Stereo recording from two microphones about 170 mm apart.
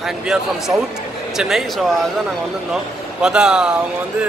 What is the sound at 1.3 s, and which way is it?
Speech, centre (ahead or behind).